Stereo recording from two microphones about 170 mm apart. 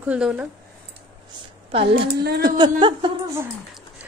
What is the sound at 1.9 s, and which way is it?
Speech, 80° right.